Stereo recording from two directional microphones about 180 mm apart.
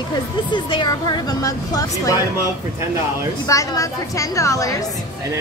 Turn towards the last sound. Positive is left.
turn(degrees=20)  # may be behind; listen again after turning